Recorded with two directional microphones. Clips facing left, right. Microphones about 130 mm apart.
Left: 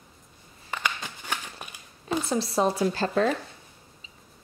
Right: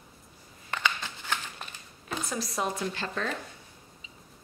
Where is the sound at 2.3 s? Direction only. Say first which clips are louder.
Left 7 dB; 30° left (ahead or behind).